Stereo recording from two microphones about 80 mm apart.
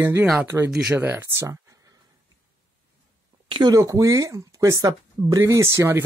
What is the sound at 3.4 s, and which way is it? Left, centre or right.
Speech, right.